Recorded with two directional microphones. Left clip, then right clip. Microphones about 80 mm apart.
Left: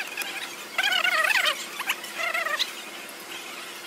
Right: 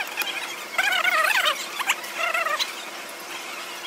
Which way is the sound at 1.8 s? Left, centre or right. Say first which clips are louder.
Right 5 dB; centre.